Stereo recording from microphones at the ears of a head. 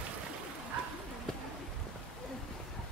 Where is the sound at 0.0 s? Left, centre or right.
Right.